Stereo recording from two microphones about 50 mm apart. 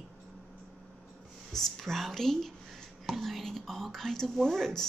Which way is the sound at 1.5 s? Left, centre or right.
Centre.